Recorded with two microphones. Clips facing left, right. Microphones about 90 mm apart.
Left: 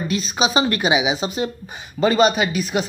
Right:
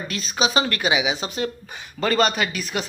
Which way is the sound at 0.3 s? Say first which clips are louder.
Left 1 dB; 20° left (ahead or behind).